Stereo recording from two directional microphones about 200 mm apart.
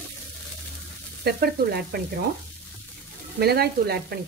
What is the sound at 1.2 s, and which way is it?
Frying, 50° right (ahead or behind).